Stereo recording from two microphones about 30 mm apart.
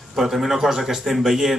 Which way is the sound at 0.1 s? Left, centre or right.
Centre.